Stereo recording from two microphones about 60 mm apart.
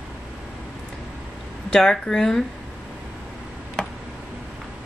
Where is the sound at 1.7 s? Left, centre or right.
Centre.